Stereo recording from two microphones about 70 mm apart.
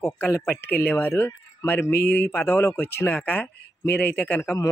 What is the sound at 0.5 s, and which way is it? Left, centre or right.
Speech, left.